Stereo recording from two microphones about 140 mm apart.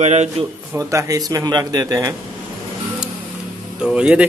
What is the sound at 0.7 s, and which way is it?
Speech, 20° right (ahead or behind).